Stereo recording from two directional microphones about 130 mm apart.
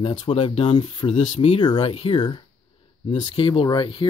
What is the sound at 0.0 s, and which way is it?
Speech, 45° left (ahead or behind).